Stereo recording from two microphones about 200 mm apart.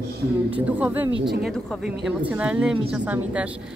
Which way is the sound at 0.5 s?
10° right (ahead or behind).